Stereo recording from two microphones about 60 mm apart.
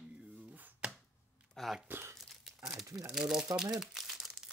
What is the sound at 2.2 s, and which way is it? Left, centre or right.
Crumpling, centre.